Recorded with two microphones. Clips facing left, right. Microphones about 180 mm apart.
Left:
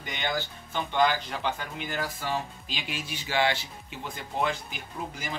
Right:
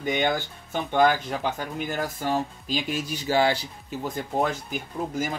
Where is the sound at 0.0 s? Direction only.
50° right (ahead or behind).